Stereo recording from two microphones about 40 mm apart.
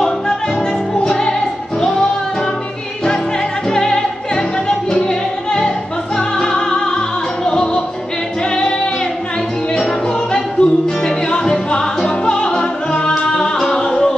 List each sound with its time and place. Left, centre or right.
1.0 s music: centre
3.7 s music: centre
9.8 s music: centre
10.6 s music: left